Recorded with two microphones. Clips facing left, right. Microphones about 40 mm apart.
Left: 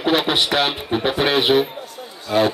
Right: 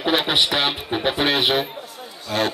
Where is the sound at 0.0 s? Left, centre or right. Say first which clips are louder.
Left 1 dB; centre.